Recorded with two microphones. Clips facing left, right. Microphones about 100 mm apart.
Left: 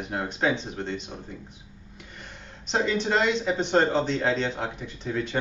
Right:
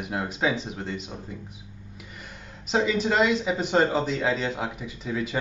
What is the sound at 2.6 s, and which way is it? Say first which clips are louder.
Speech: right 2 dB; 5° right (ahead or behind).